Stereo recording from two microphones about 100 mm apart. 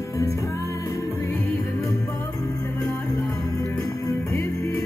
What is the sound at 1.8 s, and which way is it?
Music, 30° left (ahead or behind).